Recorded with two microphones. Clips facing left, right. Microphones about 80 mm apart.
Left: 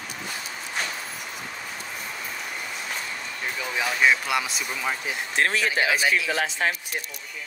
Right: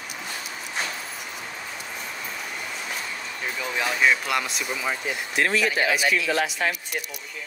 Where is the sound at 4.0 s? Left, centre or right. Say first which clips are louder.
Left 1 dB; centre.